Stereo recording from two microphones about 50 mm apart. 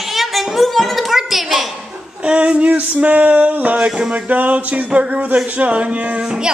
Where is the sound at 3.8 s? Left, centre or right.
Centre.